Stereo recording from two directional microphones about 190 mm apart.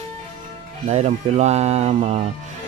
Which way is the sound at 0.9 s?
35° right (ahead or behind).